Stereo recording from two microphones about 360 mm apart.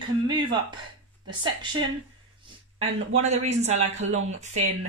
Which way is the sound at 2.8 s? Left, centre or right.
Centre.